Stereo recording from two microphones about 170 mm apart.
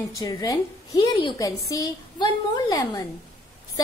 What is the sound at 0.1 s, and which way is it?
A woman's voice, 20° left (ahead or behind).